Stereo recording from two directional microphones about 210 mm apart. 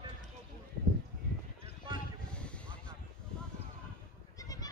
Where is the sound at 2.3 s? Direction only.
5° left (ahead or behind).